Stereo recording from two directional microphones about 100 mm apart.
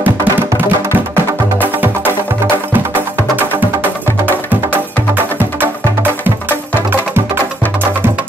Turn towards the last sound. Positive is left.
turn(degrees=-20)  # may be behind; listen again after turning